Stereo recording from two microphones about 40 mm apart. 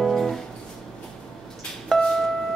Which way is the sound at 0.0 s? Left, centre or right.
Centre.